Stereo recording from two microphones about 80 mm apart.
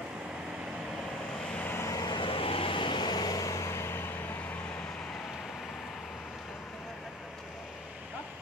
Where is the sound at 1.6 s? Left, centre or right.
Left.